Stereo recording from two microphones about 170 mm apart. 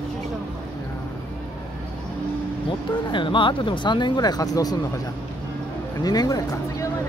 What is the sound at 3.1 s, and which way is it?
Speech, 30° left (ahead or behind).